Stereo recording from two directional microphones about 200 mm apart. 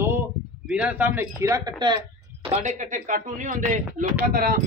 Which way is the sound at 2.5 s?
40° right (ahead or behind).